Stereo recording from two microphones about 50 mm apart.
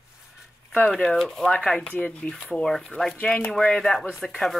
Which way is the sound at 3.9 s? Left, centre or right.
Centre.